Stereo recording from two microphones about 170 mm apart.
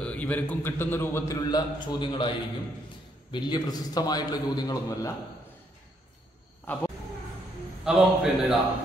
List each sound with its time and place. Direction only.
0.0 s a man's voice: 10° left (ahead or behind)
6.6 s speech: 10° left (ahead or behind)
7.8 s a man's voice: 5° right (ahead or behind)